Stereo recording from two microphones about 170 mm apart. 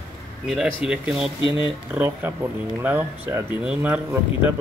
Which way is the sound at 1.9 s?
10° right (ahead or behind).